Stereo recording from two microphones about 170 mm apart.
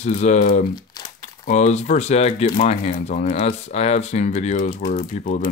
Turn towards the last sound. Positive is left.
turn(degrees=45)  # may be behind; listen again after turning